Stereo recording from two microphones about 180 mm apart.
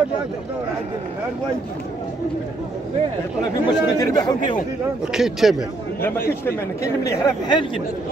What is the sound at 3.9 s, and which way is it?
Speech, 20° left (ahead or behind).